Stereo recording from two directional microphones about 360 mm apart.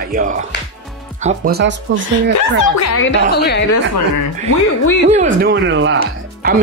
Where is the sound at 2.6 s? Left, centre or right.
Left.